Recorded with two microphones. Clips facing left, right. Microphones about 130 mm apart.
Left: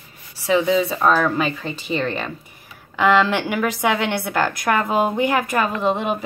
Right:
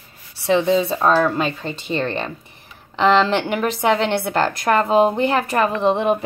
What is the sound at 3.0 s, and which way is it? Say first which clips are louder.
A woman's voice: right 1 dB; 25° right (ahead or behind).